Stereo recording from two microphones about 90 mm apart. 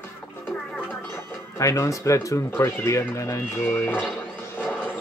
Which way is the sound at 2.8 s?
35° left (ahead or behind).